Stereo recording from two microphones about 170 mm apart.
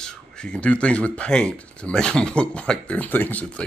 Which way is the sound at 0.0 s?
5° left (ahead or behind).